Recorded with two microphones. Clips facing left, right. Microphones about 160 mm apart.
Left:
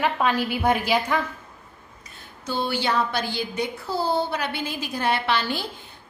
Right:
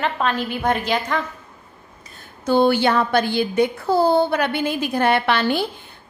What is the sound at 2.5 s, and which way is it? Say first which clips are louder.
A woman's voice: right 9 dB; 55° right (ahead or behind).